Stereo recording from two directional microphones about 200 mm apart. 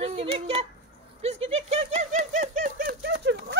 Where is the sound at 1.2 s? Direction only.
30° right (ahead or behind); by 3.6 s 60° right (ahead or behind).